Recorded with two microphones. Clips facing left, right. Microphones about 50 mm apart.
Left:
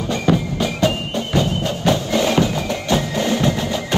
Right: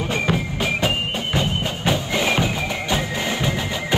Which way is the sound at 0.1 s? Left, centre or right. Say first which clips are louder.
Left 6 dB; right.